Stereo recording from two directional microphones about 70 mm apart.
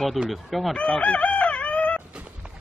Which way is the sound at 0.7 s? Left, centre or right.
Centre.